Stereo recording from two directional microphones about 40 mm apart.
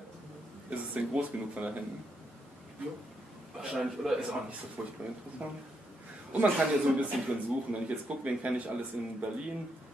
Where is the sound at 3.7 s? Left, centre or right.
Centre.